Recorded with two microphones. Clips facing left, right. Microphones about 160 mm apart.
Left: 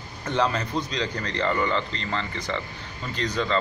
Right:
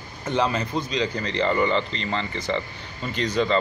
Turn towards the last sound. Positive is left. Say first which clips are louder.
# right 3 dB
turn(degrees=-15)  # may be behind; listen again after turning